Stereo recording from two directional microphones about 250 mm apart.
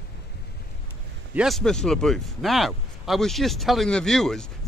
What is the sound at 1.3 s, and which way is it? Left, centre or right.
Speech, centre.